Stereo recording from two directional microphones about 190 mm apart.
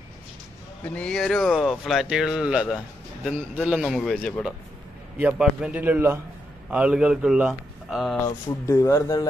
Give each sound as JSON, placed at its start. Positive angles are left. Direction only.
{"t": 0.8, "sound": "a man's voice", "side_deg": 5}
{"t": 8.3, "sound": "speech", "side_deg": 15}